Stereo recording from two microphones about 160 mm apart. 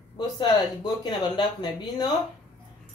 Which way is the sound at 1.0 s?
30° left (ahead or behind).